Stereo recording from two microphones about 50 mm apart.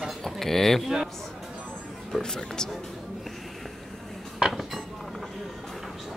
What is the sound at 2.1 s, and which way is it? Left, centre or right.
Speech, centre.